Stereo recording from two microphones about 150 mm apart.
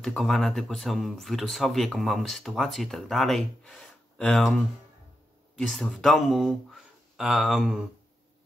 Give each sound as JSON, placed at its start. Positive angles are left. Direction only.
{"t": 0.0, "sound": "speech", "side_deg": 0}